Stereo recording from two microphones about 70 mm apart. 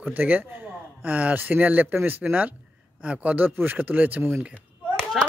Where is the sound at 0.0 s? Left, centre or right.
Right.